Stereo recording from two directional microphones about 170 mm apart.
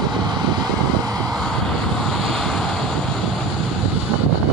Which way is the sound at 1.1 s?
5° left (ahead or behind).